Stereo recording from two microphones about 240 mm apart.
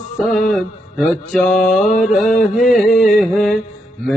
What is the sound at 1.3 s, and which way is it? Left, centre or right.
Mantra, centre.